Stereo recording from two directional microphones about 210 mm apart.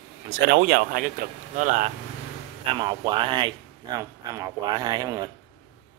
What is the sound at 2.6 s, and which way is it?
Speech, 20° right (ahead or behind).